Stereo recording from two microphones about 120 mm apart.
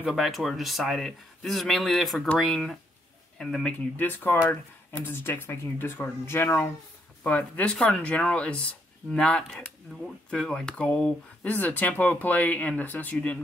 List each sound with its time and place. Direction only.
0.0 s speech: centre (ahead or behind)
3.9 s speech: 15° left (ahead or behind)